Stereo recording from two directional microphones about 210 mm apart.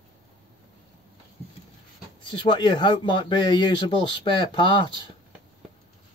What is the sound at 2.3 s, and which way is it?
Speech, 25° left (ahead or behind).